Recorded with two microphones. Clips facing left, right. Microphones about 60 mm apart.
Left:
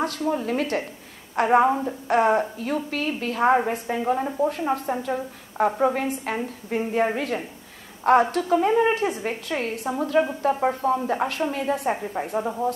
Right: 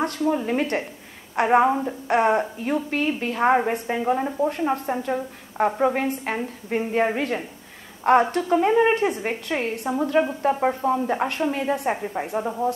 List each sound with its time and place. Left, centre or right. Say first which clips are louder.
0.0 s a woman's voice: right 2 dB; centre
2.9 s a woman's voice: right 2 dB; centre
8.9 s a woman's voice: right 2 dB; centre
9.2 s a woman's voice: right 1 dB; centre